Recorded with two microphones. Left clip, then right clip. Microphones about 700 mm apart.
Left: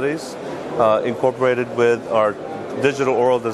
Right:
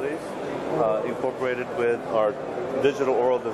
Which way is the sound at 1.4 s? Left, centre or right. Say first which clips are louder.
Left 8 dB; left.